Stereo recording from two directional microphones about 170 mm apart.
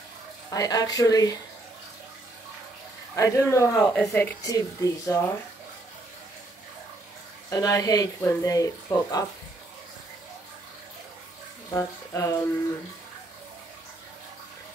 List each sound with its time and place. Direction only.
0.5 s speech: 20° left (ahead or behind)
3.2 s speech: 15° left (ahead or behind)
7.4 s speech: 20° left (ahead or behind)
11.7 s speech: 15° left (ahead or behind)